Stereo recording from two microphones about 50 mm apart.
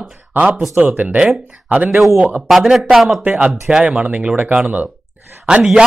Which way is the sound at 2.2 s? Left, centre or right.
Centre.